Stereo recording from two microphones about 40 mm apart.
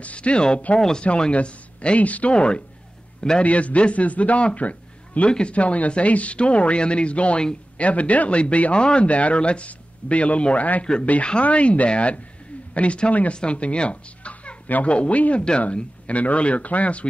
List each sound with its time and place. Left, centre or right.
0.0 s speech: left
0.7 s speech: centre
1.0 s speech: left
2.3 s a man's voice: left
3.4 s speech: left